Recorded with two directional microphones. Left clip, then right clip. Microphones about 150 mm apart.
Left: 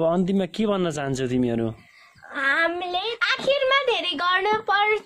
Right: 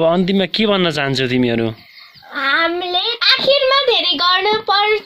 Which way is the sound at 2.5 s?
25° left (ahead or behind).